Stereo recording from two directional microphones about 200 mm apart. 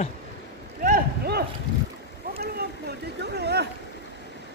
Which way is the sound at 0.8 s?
45° right (ahead or behind).